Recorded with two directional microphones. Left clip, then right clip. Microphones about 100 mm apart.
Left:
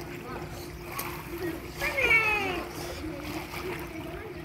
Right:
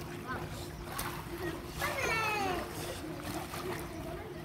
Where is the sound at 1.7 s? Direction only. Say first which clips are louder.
Left 10 dB; 50° right (ahead or behind).